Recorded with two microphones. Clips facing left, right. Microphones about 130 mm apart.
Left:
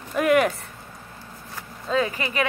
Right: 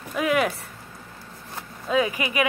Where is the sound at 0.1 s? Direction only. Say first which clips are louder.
Left 3 dB; centre (ahead or behind).